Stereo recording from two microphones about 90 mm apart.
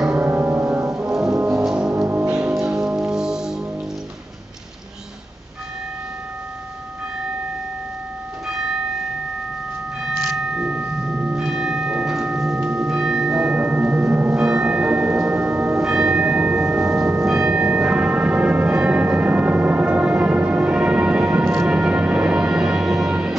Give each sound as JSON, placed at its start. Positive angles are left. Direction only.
{"t": 0.2, "sound": "music", "side_deg": -25}
{"t": 0.9, "sound": "music", "side_deg": -5}
{"t": 10.0, "sound": "a sound", "side_deg": 0}
{"t": 10.4, "sound": "bell", "side_deg": -10}
{"t": 12.6, "sound": "music", "side_deg": -5}
{"t": 14.4, "sound": "tubular bells", "side_deg": -10}
{"t": 15.8, "sound": "church bell", "side_deg": -5}
{"t": 17.2, "sound": "music", "side_deg": -5}